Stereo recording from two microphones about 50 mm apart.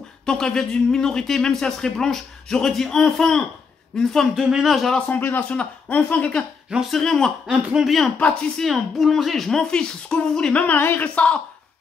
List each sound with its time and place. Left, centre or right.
0.2 s a man's voice: centre
5.0 s speech: left
5.5 s speech: left
6.9 s speech: centre
7.4 s speech: centre
8.2 s speech: left
8.5 s speech: centre
10.8 s speech: left